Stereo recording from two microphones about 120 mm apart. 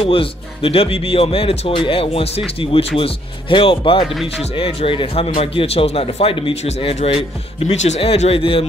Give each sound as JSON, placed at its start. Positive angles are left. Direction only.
{"t": 0.0, "sound": "a man's voice", "side_deg": 50}